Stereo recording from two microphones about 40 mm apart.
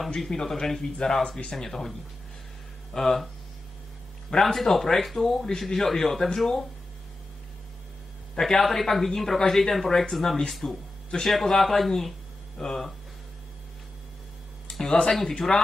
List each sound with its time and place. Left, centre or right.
0.3 s speech: centre
4.4 s speech: centre
8.4 s a man's voice: centre
15.0 s speech: centre
15.3 s speech: centre